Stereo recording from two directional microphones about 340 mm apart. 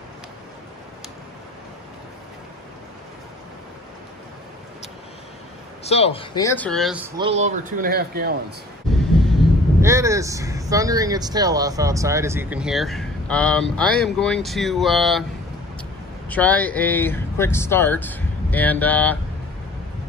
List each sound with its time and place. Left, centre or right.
5.9 s speech: centre
7.2 s speech: centre
9.8 s speech: centre
16.3 s speech: centre